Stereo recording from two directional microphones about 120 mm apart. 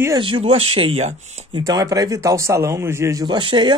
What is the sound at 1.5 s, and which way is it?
Speech, 35° right (ahead or behind).